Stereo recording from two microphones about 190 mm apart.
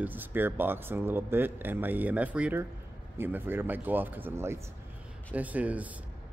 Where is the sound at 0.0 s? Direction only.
10° right (ahead or behind).